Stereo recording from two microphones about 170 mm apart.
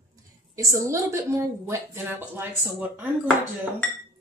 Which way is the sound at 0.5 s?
20° right (ahead or behind).